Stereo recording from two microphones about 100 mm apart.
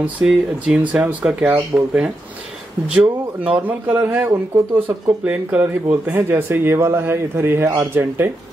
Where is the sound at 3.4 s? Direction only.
15° right (ahead or behind).